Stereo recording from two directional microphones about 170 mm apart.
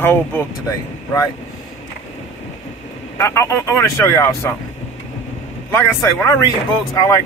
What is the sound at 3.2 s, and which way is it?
Speech, 15° left (ahead or behind).